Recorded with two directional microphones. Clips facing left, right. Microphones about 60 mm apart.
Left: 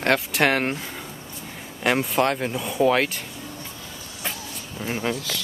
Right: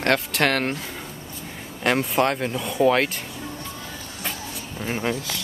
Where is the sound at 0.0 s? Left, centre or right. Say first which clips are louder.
Even; centre.